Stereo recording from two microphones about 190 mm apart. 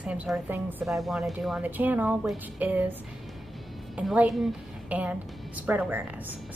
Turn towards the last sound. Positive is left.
turn(degrees=-10)  # may be behind; listen again after turning